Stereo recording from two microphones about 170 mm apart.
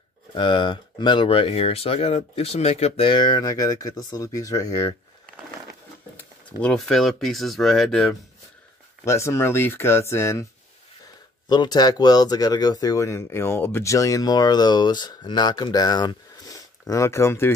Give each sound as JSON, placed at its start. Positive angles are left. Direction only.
{"t": 0.3, "sound": "speech", "side_deg": 30}
{"t": 6.1, "sound": "speech", "side_deg": 5}
{"t": 9.0, "sound": "speech", "side_deg": 15}
{"t": 11.4, "sound": "speech", "side_deg": 25}